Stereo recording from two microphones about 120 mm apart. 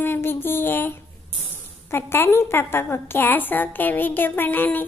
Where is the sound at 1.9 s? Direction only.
20° left (ahead or behind).